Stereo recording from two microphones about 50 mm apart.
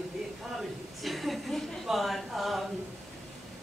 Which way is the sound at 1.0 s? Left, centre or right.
Centre.